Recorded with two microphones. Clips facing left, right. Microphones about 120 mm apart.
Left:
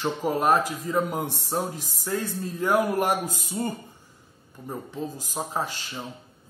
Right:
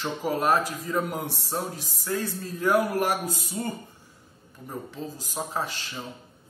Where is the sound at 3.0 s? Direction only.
15° left (ahead or behind).